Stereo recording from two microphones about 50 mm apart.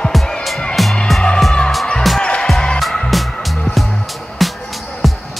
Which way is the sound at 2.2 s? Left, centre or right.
Left.